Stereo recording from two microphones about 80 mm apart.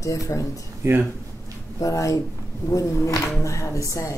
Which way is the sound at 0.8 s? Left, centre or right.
Right.